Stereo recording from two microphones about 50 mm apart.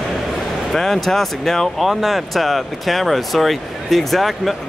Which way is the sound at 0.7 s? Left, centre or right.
Centre.